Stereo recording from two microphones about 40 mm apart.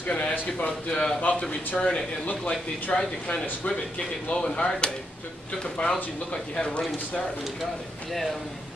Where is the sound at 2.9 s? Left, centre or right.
Left.